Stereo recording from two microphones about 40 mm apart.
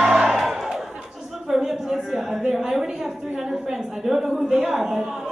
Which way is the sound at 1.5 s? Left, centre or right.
Centre.